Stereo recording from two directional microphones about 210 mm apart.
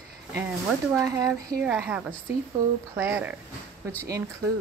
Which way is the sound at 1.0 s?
15° right (ahead or behind).